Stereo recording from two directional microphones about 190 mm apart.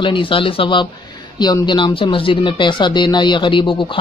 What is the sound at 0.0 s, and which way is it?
Speech, 25° left (ahead or behind).